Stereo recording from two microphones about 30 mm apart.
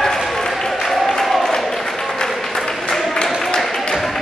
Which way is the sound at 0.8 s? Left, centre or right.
Centre.